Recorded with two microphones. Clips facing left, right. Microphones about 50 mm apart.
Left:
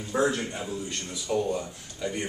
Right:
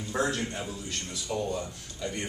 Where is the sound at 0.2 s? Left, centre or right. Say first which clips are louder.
Left 3 dB; centre.